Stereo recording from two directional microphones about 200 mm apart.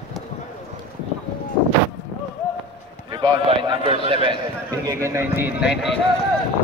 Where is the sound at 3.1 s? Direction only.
25° right (ahead or behind); by 5.9 s 5° right (ahead or behind).